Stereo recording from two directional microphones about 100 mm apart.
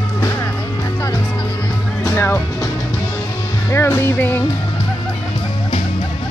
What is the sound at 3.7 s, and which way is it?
Music, 25° left (ahead or behind).